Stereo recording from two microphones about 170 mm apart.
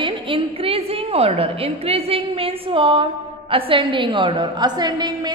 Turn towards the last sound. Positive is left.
turn(degrees=-25)  # may be behind; listen again after turning